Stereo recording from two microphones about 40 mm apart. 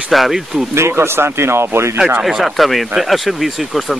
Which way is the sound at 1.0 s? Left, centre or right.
Right.